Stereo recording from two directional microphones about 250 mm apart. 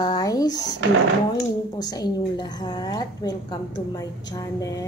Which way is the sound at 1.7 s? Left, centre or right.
Centre.